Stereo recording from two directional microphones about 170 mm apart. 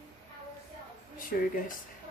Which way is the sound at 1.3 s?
55° left (ahead or behind).